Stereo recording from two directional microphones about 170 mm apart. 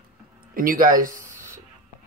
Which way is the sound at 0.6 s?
55° right (ahead or behind).